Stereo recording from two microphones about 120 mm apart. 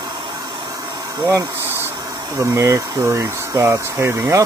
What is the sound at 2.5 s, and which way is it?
Speech, 25° right (ahead or behind).